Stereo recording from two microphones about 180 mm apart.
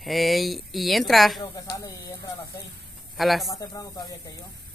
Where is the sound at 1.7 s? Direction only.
20° left (ahead or behind).